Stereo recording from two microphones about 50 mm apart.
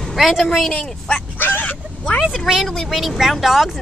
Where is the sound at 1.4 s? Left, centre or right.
Left.